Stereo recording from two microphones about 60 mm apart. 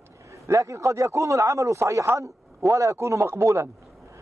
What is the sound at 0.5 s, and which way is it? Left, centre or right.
Speech, right.